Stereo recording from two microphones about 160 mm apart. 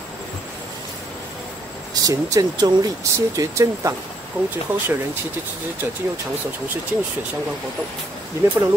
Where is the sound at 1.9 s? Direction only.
20° right (ahead or behind).